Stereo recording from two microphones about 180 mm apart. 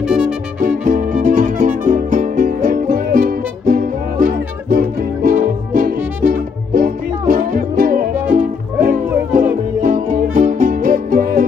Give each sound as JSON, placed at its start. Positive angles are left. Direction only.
{"t": 0.6, "sound": "music", "side_deg": -50}